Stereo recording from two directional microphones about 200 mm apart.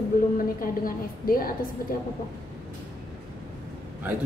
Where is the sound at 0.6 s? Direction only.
45° left (ahead or behind).